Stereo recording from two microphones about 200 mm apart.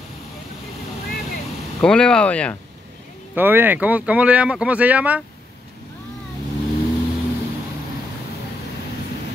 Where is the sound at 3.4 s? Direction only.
10° right (ahead or behind).